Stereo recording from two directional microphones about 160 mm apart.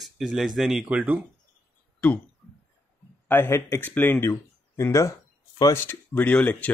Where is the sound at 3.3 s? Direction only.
15° left (ahead or behind).